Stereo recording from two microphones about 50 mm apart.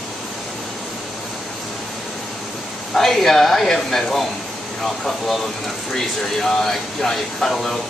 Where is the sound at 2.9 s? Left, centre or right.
Centre.